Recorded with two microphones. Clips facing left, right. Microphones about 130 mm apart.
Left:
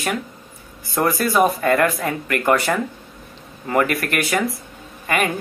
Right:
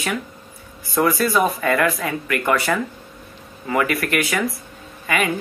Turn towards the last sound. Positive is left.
turn(degrees=45)  # may be behind; listen again after turning